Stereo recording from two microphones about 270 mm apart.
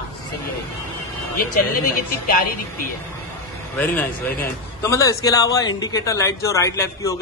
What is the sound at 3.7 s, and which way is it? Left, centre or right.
A man's voice, centre.